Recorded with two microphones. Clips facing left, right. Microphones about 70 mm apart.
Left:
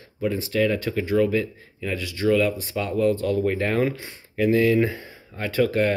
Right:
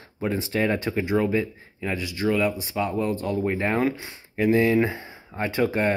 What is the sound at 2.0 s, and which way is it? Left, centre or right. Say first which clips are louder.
Speech: left 3 dB; centre.